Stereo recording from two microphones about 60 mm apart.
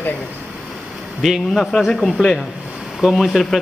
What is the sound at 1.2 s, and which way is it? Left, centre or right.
A man's voice, centre.